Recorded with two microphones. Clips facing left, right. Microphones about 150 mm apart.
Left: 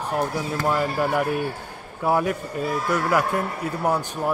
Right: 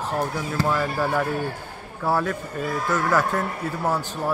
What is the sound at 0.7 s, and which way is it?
Speech, 15° left (ahead or behind).